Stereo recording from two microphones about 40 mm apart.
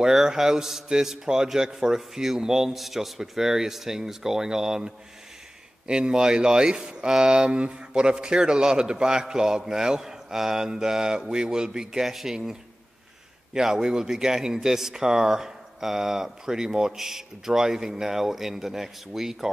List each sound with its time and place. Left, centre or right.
0.0 s speech: centre
13.5 s speech: centre